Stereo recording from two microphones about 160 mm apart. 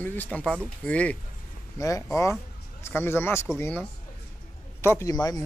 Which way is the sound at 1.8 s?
20° left (ahead or behind).